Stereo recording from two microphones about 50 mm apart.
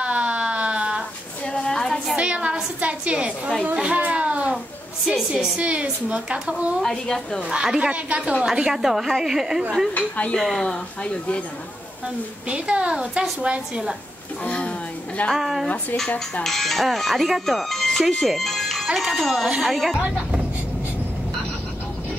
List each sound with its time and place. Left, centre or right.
0.0 s a sound: right
1.5 s child singing: centre
2.1 s a sound: right
5.6 s a woman's voice: right
6.5 s a woman's voice: centre
7.4 s a woman's voice: centre
8.7 s a woman's voice: centre
9.9 s speech: left
10.4 s speech: centre
12.4 s a woman's voice: right
14.4 s speech: left
15.3 s speech: centre
18.2 s music: centre
18.9 s speech: centre